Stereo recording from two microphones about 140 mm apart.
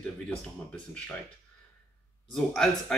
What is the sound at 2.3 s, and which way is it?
Speech, 5° left (ahead or behind).